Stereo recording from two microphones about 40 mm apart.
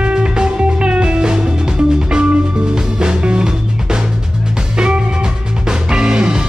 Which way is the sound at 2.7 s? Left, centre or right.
Right.